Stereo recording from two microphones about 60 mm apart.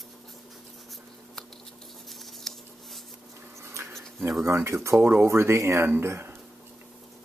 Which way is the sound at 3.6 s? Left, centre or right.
Right.